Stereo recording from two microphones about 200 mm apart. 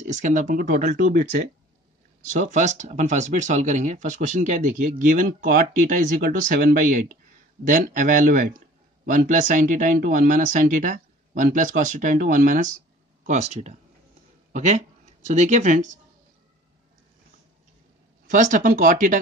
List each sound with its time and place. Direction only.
0.0 s a man's voice: 40° right (ahead or behind)
18.3 s a man's voice: 40° right (ahead or behind)